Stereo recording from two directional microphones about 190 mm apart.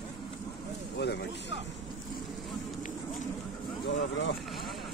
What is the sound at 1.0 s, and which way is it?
Speech, 65° left (ahead or behind).